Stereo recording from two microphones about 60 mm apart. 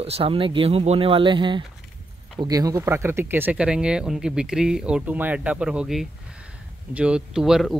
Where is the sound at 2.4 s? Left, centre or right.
Right.